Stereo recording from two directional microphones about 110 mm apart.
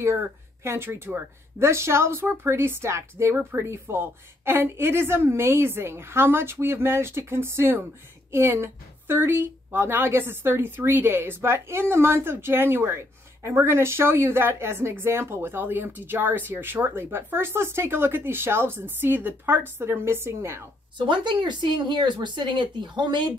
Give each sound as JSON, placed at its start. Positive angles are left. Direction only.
{"t": 0.7, "sound": "a woman's voice", "side_deg": -20}
{"t": 21.1, "sound": "speech", "side_deg": -45}